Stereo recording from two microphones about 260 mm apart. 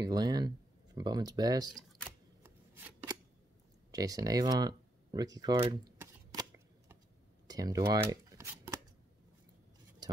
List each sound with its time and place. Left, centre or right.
0.0 s speech: centre
1.7 s camera: centre
2.4 s shuffling cards: centre
3.9 s speech: centre
7.4 s shuffling cards: centre
10.0 s a sound: centre